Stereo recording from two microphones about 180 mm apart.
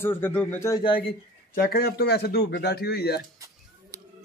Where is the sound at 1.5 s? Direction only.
60° left (ahead or behind).